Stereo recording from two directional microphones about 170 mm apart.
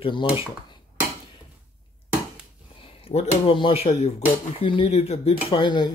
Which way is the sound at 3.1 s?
40° left (ahead or behind).